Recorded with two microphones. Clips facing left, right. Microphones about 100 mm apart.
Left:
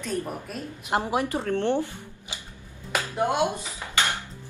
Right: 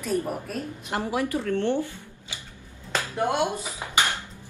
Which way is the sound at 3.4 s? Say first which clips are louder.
Even; 15° right (ahead or behind).